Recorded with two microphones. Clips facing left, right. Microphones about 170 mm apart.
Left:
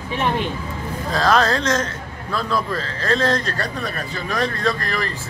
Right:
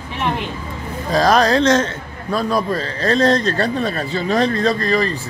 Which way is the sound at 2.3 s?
20° right (ahead or behind).